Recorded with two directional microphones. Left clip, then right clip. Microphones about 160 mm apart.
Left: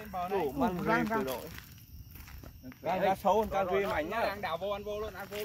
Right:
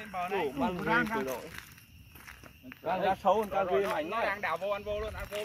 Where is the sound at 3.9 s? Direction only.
50° left (ahead or behind).